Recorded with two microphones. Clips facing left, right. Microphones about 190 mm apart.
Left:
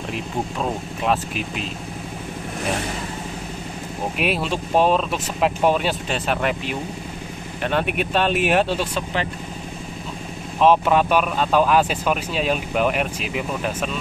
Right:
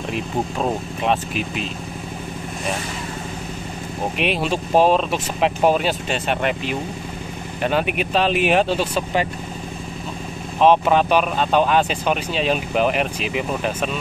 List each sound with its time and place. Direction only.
1.0 s speech: centre (ahead or behind)
4.2 s speech: 5° left (ahead or behind)
4.7 s speech: 35° right (ahead or behind)
5.1 s speech: centre (ahead or behind)
10.6 s speech: centre (ahead or behind)